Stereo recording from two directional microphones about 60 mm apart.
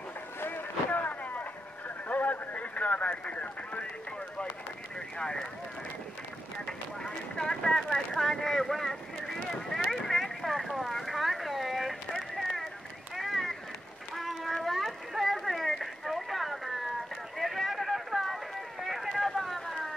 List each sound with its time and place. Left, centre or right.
0.4 s boat: left
0.8 s vehicle: left
2.0 s a sound: left
5.2 s speech: centre
7.0 s a sound: centre
17.4 s run: centre